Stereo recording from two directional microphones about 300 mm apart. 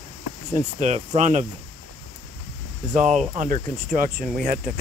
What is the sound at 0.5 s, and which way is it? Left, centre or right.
Speech, right.